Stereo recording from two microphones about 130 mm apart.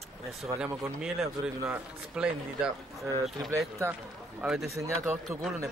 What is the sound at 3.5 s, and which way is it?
A man's voice, 20° right (ahead or behind).